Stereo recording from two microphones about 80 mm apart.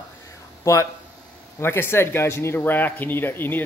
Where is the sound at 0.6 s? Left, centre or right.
Left.